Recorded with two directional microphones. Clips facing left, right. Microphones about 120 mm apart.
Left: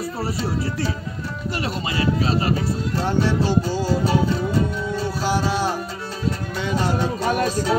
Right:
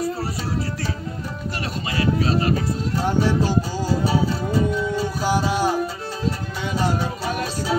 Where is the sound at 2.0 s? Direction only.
30° left (ahead or behind).